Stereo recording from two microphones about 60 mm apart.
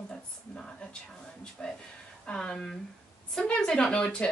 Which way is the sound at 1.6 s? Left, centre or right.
Centre.